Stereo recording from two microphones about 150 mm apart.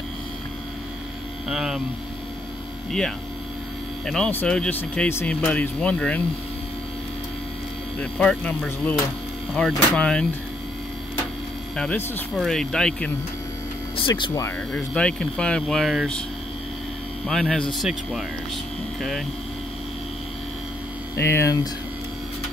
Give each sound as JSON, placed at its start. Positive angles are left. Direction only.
{"t": 1.5, "sound": "speech", "side_deg": -5}
{"t": 4.0, "sound": "speech", "side_deg": 5}
{"t": 8.0, "sound": "speech", "side_deg": 5}
{"t": 11.7, "sound": "speech", "side_deg": 5}
{"t": 13.9, "sound": "speech", "side_deg": 30}
{"t": 14.7, "sound": "speech", "side_deg": 5}
{"t": 17.3, "sound": "speech", "side_deg": 0}
{"t": 21.2, "sound": "speech", "side_deg": 15}